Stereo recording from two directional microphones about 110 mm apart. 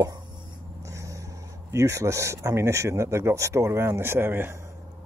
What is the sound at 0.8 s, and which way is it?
Speech, 30° right (ahead or behind).